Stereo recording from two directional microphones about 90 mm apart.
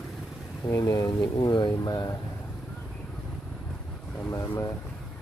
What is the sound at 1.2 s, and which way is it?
Speech, 60° left (ahead or behind).